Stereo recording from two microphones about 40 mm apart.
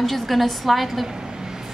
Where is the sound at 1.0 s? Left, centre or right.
Centre.